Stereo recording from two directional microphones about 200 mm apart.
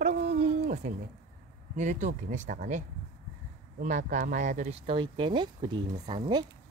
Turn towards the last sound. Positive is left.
turn(degrees=-20)  # may be behind; listen again after turning